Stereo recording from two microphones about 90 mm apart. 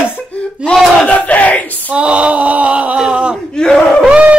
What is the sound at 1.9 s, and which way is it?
A man's voice, 15° right (ahead or behind).